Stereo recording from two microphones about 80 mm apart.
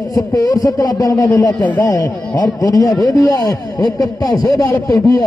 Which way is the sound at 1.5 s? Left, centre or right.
Centre.